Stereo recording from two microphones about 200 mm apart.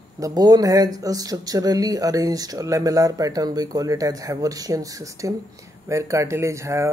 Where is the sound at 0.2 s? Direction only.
20° right (ahead or behind).